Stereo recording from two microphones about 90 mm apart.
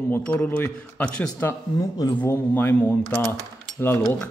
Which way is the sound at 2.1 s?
20° left (ahead or behind).